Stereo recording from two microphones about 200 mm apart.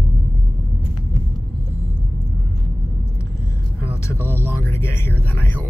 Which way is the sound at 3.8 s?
15° left (ahead or behind).